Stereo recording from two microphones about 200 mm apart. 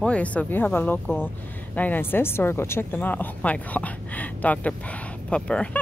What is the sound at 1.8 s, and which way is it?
Speech, 10° left (ahead or behind).